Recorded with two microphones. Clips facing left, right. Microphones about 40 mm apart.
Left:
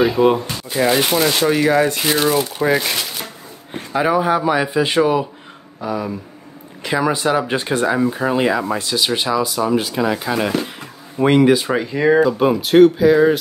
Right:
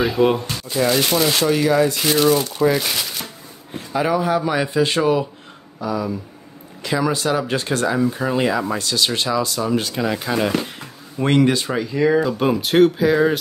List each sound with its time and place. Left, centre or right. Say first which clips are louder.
0.2 s speech: left 2 dB; left
3.9 s speech: left 2 dB; centre
5.8 s speech: even; left; by 11.7 s centre
11.9 s speech: left 2 dB; left
12.3 s speech: left 3 dB; centre